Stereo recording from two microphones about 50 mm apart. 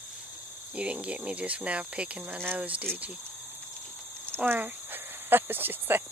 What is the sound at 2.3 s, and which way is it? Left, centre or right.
Speech, right.